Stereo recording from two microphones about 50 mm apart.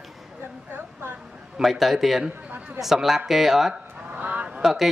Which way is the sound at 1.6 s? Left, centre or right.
Centre.